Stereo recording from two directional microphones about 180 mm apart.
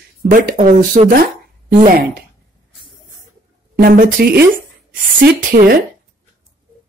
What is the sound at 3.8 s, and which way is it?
A woman's voice, 50° right (ahead or behind).